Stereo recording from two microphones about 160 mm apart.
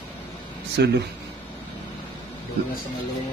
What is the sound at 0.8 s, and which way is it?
Speech, 90° right.